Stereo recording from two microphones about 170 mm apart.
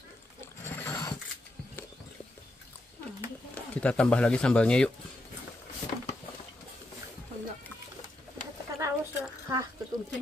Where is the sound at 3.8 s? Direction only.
5° left (ahead or behind).